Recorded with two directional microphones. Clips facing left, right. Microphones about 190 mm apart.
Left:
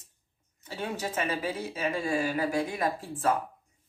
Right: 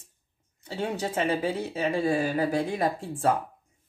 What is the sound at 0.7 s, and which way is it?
Speech, 30° right (ahead or behind).